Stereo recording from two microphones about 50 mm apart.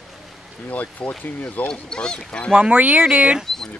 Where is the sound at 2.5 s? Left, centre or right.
Right.